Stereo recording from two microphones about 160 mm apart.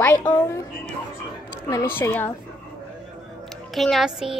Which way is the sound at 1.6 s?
20° left (ahead or behind).